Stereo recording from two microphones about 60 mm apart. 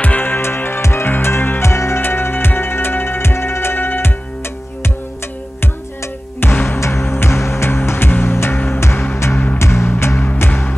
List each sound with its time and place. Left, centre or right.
0.0 s music: left
6.4 s music: left